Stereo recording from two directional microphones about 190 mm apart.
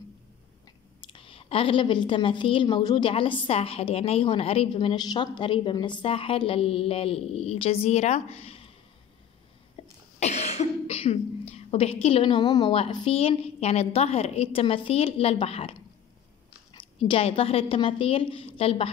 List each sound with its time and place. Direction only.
1.0 s a woman's voice: 25° left (ahead or behind)
9.8 s cough: 30° left (ahead or behind)
10.2 s speech: 35° left (ahead or behind)
16.7 s a woman's voice: 30° left (ahead or behind)